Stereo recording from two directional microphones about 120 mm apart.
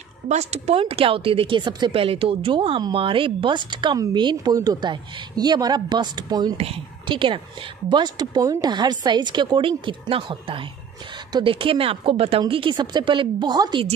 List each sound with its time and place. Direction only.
0.3 s a woman's voice: 65° right (ahead or behind); by 2.0 s 40° right (ahead or behind)
2.0 s a woman's voice: 50° right (ahead or behind)
6.5 s a woman's voice: 55° right (ahead or behind); by 13.8 s 35° right (ahead or behind)